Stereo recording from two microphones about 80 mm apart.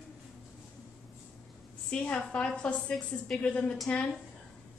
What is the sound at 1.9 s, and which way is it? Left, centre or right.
A woman's voice, centre.